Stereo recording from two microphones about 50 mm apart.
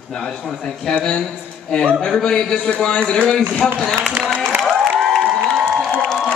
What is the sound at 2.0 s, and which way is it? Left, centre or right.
Speech, centre.